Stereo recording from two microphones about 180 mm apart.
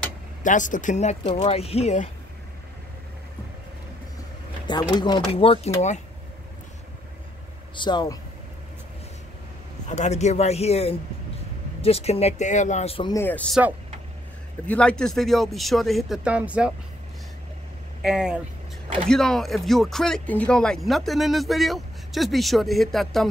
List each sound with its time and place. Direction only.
0.4 s speech: 45° left (ahead or behind)
1.2 s speech: 30° left (ahead or behind)
4.6 s speech: 25° left (ahead or behind)
7.7 s speech: 25° left (ahead or behind)
9.8 s speech: 40° left (ahead or behind)
13.1 s speech: 10° left (ahead or behind)
14.7 s speech: 5° left (ahead or behind)
18.0 s speech: 5° right (ahead or behind)